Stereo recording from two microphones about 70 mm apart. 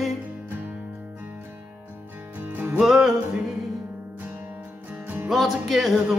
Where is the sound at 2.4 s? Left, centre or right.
Right.